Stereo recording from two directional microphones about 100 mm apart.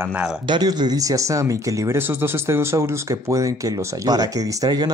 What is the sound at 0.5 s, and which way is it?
Speech, 45° right (ahead or behind).